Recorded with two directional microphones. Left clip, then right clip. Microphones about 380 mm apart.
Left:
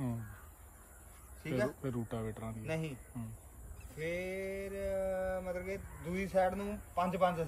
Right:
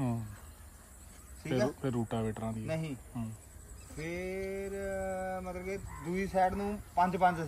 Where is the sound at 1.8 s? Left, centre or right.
Right.